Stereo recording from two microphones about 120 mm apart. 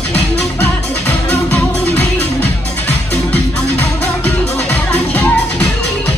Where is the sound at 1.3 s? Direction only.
10° left (ahead or behind).